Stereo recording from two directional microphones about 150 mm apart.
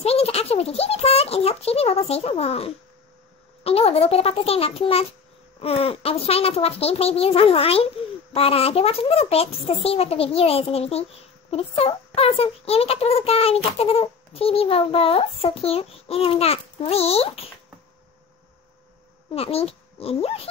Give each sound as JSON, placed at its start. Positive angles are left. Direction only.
{"t": 0.0, "sound": "a child's voice", "side_deg": 40}
{"t": 19.3, "sound": "a child's voice", "side_deg": 40}